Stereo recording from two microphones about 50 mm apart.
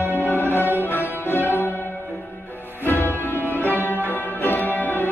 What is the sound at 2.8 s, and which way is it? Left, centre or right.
Music, left.